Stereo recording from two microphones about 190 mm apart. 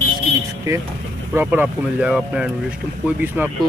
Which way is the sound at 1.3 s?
10° right (ahead or behind).